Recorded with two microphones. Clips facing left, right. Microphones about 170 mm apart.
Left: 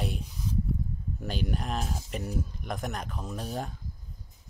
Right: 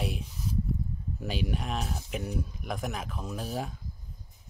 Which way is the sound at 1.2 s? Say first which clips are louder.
Even; centre (ahead or behind).